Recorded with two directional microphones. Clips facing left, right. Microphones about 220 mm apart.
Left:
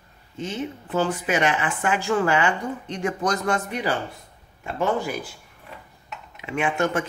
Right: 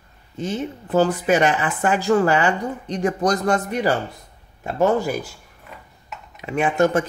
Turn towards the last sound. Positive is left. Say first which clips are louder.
# right 5 dB
turn(degrees=-40)  # may be behind; listen again after turning